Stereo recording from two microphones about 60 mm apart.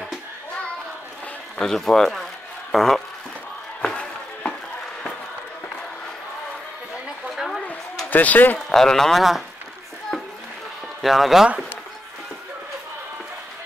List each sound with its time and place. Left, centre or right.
1.6 s speech: centre
3.8 s a sound: centre
7.2 s a sound: centre
8.1 s speech: left
8.6 s speech: centre
11.0 s speech: centre